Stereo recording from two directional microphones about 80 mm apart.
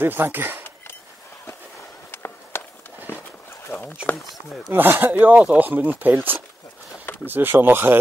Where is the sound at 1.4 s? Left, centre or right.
Left.